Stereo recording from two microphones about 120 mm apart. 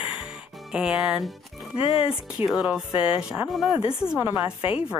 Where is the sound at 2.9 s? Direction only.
45° left (ahead or behind).